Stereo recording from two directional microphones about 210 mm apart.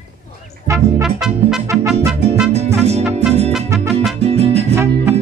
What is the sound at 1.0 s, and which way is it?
Music, centre (ahead or behind).